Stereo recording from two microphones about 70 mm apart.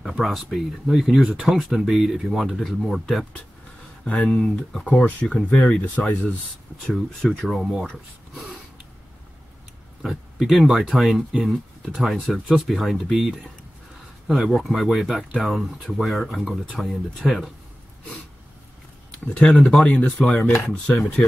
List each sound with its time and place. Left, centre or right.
0.2 s speech: centre
4.0 s speech: centre
6.9 s speech: centre
7.8 s speech: centre
10.0 s speech: centre
19.4 s speech: centre